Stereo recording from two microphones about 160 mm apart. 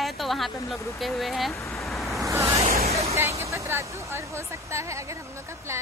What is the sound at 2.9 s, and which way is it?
Vehicle, 40° right (ahead or behind).